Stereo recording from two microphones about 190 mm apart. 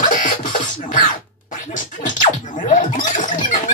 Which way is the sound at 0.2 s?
45° left (ahead or behind).